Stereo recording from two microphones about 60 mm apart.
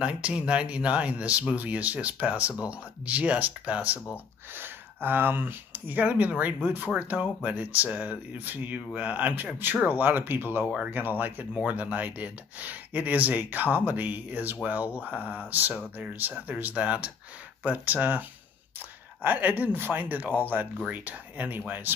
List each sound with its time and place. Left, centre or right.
0.0 s speech: centre
4.6 s speech: right
10.6 s speech: right
10.9 s speech: right
19.2 s speech: right